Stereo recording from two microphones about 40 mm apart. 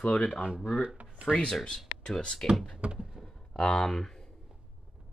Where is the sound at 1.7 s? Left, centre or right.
Centre.